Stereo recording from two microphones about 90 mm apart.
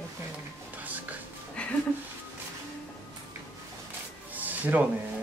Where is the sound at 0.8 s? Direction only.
20° right (ahead or behind).